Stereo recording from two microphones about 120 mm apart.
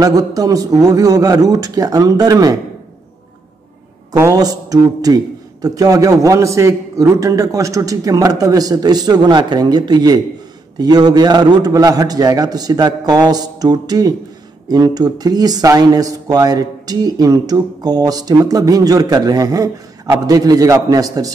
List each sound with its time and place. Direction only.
0.0 s speech: 30° right (ahead or behind)
4.2 s speech: 30° right (ahead or behind)